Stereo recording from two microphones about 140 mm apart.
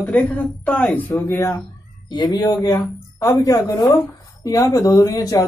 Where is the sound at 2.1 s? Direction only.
30° left (ahead or behind).